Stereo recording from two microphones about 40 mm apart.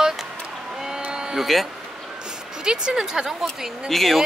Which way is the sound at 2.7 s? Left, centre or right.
Centre.